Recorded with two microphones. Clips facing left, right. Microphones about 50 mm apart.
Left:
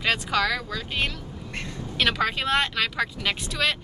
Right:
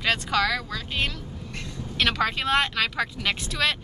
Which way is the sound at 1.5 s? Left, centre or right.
Left.